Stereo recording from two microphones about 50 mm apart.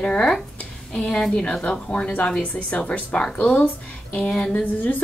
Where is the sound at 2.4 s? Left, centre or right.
Left.